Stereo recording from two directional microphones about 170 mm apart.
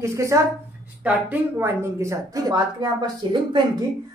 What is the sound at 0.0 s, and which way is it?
A woman's voice, 15° right (ahead or behind).